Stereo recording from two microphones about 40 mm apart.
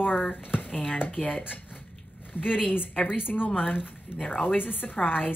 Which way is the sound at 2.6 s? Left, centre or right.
Left.